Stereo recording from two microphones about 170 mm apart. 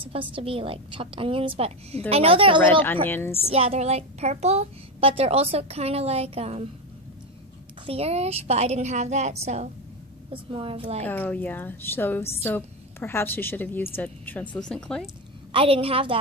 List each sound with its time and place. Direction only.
0.0 s a child's voice: 30° right (ahead or behind)
2.8 s a woman's voice: 10° left (ahead or behind)
3.5 s a child's voice: 35° right (ahead or behind)
7.8 s a child's voice: 35° right (ahead or behind)
11.1 s a woman's voice: 10° left (ahead or behind)
15.5 s a child's voice: 35° right (ahead or behind)